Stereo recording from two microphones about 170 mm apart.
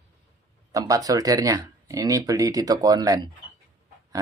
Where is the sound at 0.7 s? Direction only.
20° right (ahead or behind).